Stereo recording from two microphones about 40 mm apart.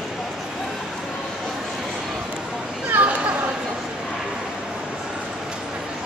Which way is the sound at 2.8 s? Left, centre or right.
Right.